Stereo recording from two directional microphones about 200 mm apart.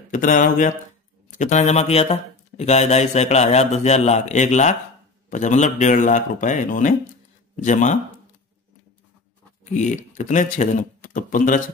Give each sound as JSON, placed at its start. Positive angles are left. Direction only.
{"t": 0.1, "sound": "speech", "side_deg": 40}
{"t": 9.8, "sound": "speech", "side_deg": 35}